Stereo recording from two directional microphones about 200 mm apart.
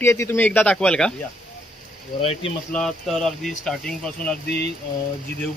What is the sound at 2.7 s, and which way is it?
Speech, centre (ahead or behind).